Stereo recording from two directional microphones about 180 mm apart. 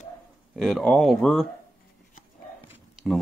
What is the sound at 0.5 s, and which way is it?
Speech, centre (ahead or behind).